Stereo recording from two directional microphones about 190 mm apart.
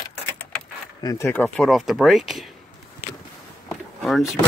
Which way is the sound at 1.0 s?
15° left (ahead or behind).